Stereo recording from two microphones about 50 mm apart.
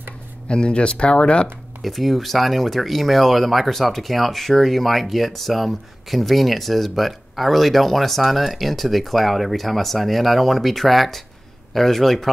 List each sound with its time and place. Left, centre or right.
0.5 s speech: left
1.8 s speech: centre